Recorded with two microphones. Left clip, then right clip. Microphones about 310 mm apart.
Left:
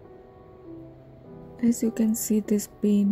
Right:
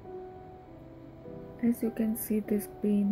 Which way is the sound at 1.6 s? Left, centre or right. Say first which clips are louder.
Left 6 dB; left.